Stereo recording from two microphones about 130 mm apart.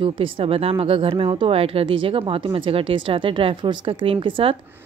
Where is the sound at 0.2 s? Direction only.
45° right (ahead or behind).